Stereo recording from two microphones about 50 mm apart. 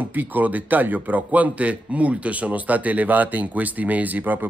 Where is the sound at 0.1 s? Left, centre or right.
Right.